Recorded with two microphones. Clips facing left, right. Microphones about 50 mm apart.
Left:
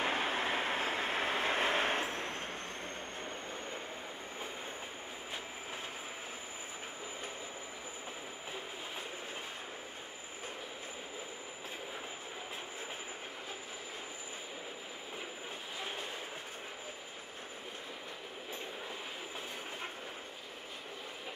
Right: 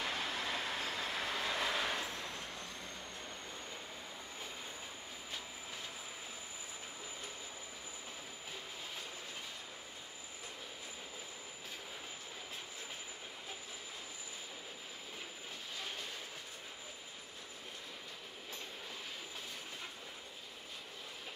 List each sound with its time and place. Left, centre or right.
0.0 s vehicle: left